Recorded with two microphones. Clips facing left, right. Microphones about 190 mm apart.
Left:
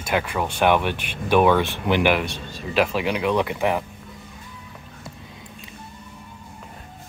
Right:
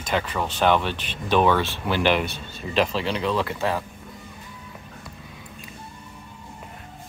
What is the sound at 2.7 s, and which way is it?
Speech, 10° left (ahead or behind).